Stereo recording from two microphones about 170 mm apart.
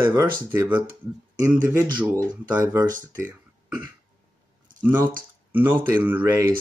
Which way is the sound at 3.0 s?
10° right (ahead or behind).